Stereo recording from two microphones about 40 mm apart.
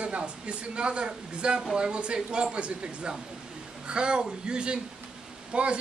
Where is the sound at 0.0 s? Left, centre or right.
Right.